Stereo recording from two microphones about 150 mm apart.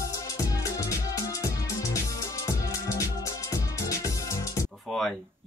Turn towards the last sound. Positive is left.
turn(degrees=5)  # may be behind; listen again after turning